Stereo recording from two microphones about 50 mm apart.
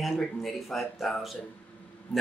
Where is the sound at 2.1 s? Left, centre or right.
Left.